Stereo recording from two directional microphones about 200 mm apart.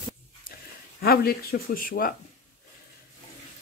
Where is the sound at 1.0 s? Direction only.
50° left (ahead or behind).